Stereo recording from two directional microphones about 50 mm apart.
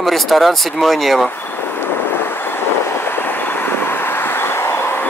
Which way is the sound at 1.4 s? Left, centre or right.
Left.